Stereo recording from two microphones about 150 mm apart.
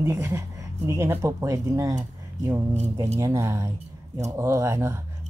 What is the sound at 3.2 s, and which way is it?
Speech, 20° right (ahead or behind).